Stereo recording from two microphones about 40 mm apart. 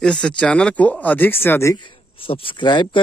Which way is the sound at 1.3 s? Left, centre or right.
Left.